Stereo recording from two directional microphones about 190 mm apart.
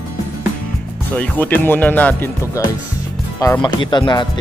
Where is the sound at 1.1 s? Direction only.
10° left (ahead or behind).